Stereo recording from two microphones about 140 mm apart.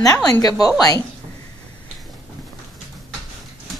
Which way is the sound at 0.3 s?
25° left (ahead or behind).